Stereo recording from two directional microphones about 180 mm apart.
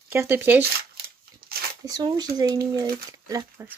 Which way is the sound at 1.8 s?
20° right (ahead or behind).